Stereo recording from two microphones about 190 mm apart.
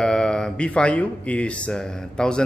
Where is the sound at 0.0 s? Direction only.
5° left (ahead or behind).